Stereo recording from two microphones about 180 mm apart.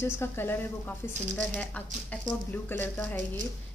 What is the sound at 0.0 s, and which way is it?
Speech, 10° left (ahead or behind).